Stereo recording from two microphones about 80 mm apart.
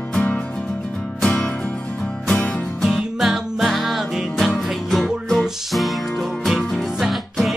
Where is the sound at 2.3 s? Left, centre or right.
Centre.